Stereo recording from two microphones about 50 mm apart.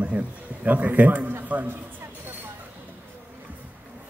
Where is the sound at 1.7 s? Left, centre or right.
Right.